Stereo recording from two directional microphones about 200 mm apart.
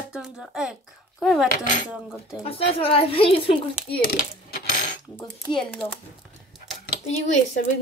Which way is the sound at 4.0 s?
50° left (ahead or behind).